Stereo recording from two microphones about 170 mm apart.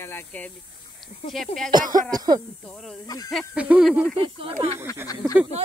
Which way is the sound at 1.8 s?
55° right (ahead or behind).